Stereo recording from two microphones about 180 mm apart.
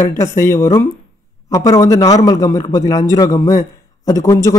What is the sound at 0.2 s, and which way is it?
A man's voice, 15° left (ahead or behind).